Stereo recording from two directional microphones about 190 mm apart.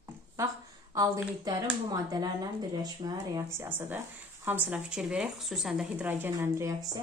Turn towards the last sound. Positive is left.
turn(degrees=-20)  # may be behind; listen again after turning